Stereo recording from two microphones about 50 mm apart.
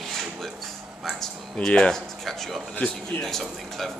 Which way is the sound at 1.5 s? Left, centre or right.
Centre.